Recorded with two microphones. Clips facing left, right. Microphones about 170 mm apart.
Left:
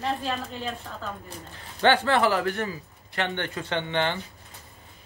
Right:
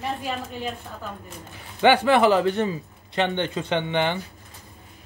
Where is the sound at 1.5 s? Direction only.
15° right (ahead or behind).